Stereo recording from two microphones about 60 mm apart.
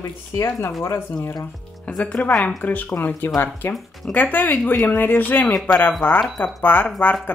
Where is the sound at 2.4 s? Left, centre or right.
Left.